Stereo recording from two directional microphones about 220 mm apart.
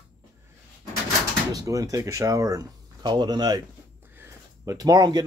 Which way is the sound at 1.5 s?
15° right (ahead or behind).